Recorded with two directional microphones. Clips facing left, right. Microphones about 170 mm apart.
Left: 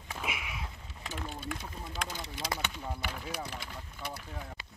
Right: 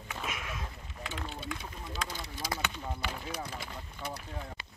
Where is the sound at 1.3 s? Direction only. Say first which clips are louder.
Left 1 dB; 50° left (ahead or behind).